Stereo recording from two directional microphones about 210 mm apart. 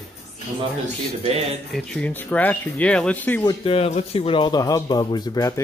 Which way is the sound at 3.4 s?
25° left (ahead or behind).